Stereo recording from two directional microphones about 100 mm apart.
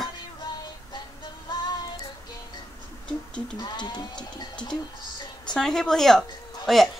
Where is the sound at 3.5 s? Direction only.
45° left (ahead or behind).